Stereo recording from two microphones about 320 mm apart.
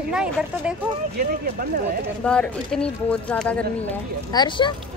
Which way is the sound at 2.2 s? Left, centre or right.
Centre.